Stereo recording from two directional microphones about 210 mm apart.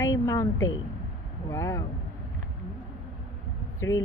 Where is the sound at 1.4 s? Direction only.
15° left (ahead or behind).